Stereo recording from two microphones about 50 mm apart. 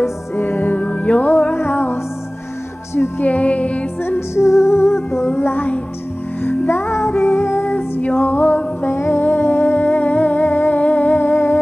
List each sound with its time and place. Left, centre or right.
0.4 s music: left
0.7 s music: left
1.6 s music: left
3.2 s music: left
4.4 s music: left
6.7 s music: left
7.6 s music: left
8.8 s humming: left